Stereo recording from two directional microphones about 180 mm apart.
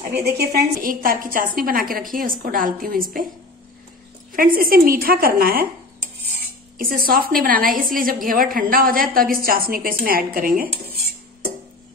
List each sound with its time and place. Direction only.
0.1 s a woman's voice: 60° right (ahead or behind)
4.3 s a woman's voice: 50° right (ahead or behind)
6.8 s a woman's voice: 55° right (ahead or behind)